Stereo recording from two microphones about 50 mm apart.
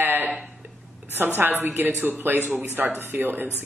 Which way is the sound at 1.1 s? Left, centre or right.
Right.